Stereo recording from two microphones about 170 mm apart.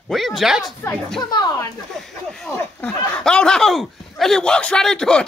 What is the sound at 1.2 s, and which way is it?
Speech, 25° left (ahead or behind).